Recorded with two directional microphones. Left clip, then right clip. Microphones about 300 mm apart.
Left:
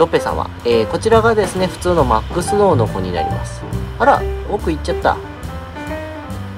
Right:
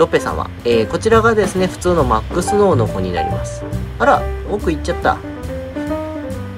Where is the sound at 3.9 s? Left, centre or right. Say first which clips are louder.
Even; centre.